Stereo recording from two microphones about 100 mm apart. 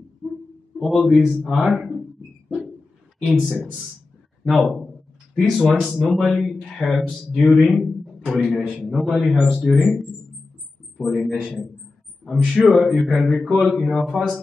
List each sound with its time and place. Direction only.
0.7 s speech: centre (ahead or behind)
3.3 s speech: 10° right (ahead or behind)
4.5 s speech: centre (ahead or behind)